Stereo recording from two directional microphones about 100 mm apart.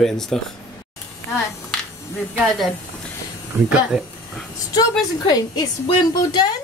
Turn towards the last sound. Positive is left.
turn(degrees=40)  # may be behind; listen again after turning